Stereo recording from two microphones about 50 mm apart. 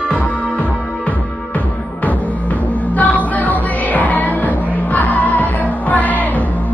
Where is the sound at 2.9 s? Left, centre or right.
Left.